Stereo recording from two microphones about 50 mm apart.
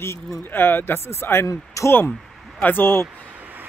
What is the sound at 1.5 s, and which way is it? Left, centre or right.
Speech, left.